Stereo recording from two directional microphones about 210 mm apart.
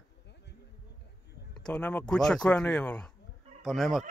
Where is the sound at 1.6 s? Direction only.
5° left (ahead or behind).